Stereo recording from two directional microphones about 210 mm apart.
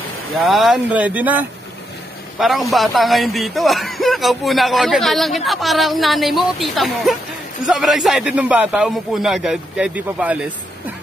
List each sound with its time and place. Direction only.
0.5 s speech: centre (ahead or behind)